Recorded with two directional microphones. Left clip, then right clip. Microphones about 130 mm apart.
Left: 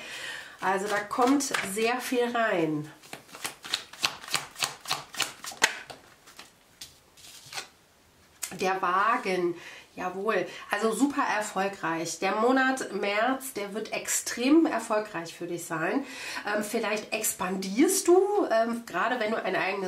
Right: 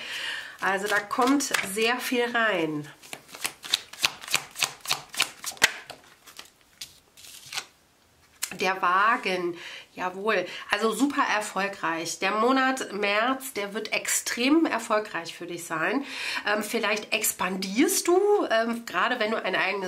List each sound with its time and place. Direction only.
0.0 s speech: 25° right (ahead or behind)
3.1 s shuffling cards: 15° right (ahead or behind)
7.5 s a sound: 15° right (ahead or behind)
8.5 s speech: 25° right (ahead or behind)